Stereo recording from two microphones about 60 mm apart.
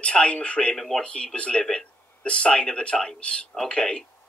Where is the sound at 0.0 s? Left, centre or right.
Centre.